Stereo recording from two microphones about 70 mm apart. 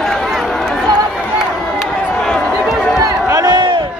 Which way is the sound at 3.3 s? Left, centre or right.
Right.